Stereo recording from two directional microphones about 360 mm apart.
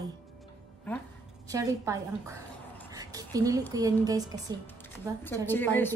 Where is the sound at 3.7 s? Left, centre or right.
Centre.